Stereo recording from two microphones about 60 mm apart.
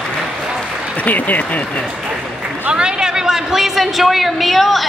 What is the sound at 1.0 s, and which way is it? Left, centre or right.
Speech, left.